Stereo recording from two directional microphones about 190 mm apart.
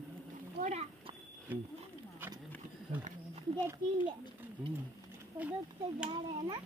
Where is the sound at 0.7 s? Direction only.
35° right (ahead or behind).